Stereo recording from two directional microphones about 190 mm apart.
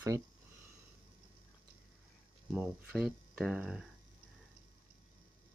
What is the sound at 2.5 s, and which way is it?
Speech, 5° right (ahead or behind).